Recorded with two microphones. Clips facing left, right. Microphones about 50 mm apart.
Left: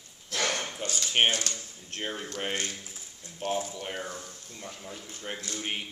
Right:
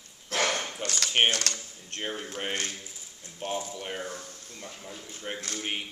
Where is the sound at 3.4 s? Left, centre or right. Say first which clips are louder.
Left 2 dB; centre.